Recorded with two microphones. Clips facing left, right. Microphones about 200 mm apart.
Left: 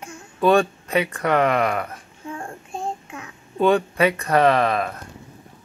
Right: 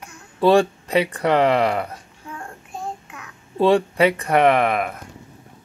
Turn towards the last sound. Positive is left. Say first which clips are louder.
# right 1 dB
turn(degrees=-15)  # may be behind; listen again after turning